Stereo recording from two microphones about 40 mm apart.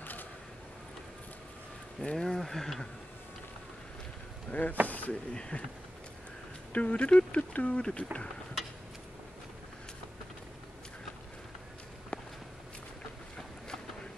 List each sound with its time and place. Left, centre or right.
0.0 s a sound: left
2.0 s speech: left
2.3 s speech: centre
4.5 s speech: left
4.8 s a sound: left
5.3 s speech: left
6.7 s speech: left
12.1 s walk: left